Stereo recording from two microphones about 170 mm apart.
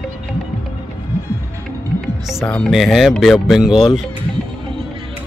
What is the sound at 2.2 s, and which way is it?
Speech, centre (ahead or behind).